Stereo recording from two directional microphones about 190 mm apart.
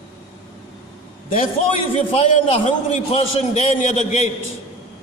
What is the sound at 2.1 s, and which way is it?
A man's voice, 35° left (ahead or behind).